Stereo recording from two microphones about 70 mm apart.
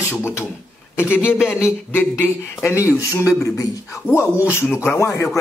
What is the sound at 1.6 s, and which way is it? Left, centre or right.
Speech, left.